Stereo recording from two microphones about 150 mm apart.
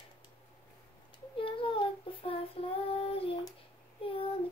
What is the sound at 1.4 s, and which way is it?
Child singing, 35° left (ahead or behind).